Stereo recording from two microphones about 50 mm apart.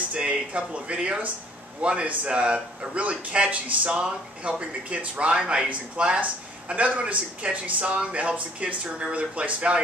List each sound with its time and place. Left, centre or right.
0.1 s a man's voice: right